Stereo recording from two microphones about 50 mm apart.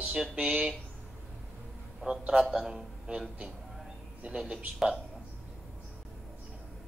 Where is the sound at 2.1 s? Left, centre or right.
Centre.